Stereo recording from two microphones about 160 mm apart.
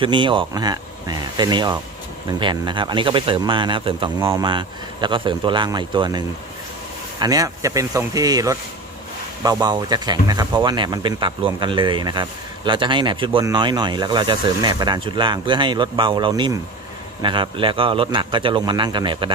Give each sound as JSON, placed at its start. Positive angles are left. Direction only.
{"t": 0.0, "sound": "a man's voice", "side_deg": -30}